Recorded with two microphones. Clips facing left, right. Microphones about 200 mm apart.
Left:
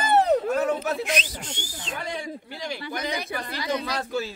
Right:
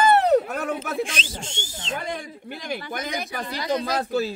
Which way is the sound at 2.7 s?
50° right (ahead or behind).